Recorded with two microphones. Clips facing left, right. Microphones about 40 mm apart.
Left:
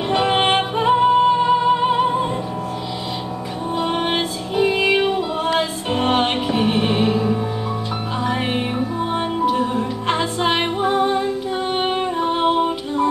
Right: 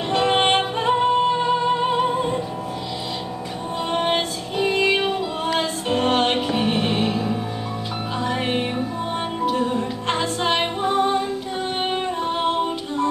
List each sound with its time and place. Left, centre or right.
0.1 s music: centre
3.7 s music: centre